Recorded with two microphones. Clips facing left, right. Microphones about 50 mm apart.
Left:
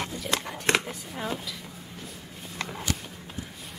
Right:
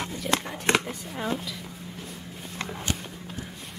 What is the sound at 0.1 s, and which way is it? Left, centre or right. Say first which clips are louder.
Speech: right 2 dB; centre.